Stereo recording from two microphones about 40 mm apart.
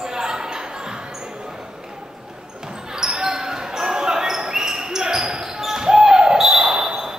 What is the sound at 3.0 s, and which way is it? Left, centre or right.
Basketball bounce, centre.